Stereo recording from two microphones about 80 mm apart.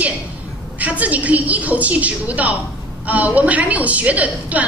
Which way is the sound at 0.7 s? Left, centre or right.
Centre.